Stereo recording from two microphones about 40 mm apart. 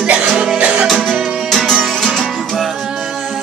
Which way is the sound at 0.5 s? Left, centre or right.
Right.